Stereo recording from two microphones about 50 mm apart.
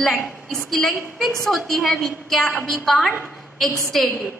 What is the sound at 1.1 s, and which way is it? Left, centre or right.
A woman's voice, centre.